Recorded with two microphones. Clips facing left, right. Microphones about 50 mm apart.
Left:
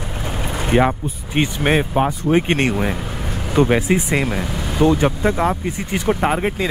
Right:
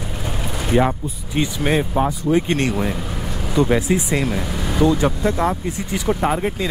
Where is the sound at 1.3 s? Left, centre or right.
Left.